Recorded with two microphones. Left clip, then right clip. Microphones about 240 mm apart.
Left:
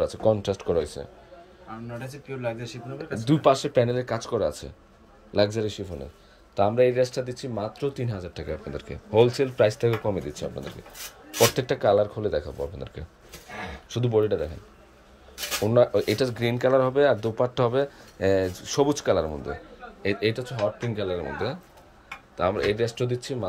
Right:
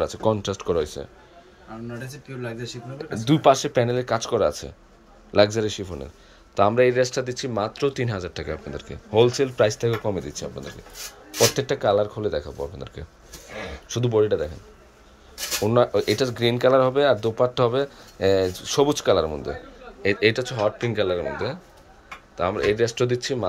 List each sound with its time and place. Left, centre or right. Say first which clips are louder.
0.0 s speech: even; centre
2.0 s speech: left 3 dB; centre
15.6 s speech: right 1 dB; centre